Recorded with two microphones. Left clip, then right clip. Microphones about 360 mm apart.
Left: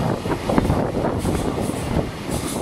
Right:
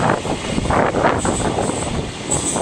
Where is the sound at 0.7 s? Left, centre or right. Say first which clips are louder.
Right 7 dB; right.